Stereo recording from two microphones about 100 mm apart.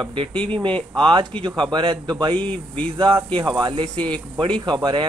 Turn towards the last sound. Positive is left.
turn(degrees=-55)  # may be behind; listen again after turning